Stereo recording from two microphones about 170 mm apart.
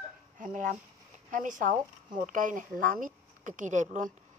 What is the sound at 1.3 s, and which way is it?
Speech, 50° right (ahead or behind).